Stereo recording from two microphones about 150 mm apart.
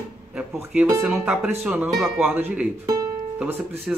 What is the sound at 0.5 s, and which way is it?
Music, 20° right (ahead or behind).